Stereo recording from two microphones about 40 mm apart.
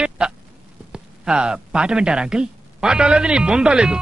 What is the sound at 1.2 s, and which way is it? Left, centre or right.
Speech, right.